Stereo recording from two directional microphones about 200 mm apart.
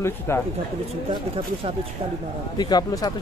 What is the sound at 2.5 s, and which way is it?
Speech, 20° left (ahead or behind).